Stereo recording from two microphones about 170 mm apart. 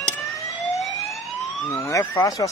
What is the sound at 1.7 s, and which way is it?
Speech, 15° left (ahead or behind).